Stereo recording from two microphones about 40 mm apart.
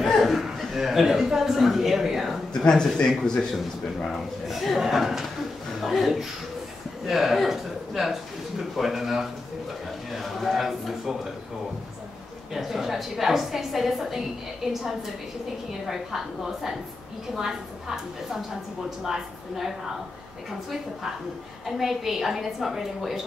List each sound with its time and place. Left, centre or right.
0.0 s chuckle: centre
0.7 s speech: centre
2.5 s speech: centre
4.0 s a woman's voice: centre
10.1 s a sound: centre
12.5 s a woman's voice: centre
17.4 s a woman's voice: centre
21.6 s a woman's voice: centre